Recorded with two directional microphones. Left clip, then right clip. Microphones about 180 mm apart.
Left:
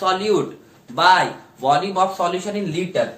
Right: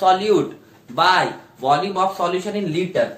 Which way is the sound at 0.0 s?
10° right (ahead or behind).